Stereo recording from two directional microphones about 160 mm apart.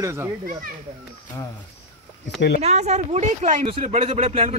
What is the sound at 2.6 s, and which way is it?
Speech, 45° right (ahead or behind).